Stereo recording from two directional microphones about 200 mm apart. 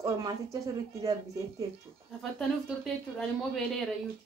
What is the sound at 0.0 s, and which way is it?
Speech, 15° right (ahead or behind).